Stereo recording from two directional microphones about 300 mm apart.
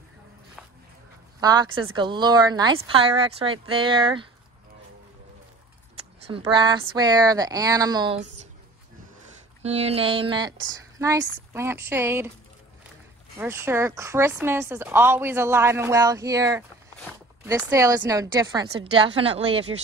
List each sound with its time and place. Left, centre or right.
1.4 s speech: centre
6.2 s speech: centre
9.6 s speech: right
13.4 s speech: centre